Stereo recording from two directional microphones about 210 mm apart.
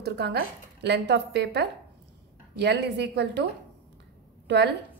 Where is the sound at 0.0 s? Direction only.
50° right (ahead or behind).